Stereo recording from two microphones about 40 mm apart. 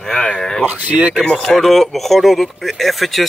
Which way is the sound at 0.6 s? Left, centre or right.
Right.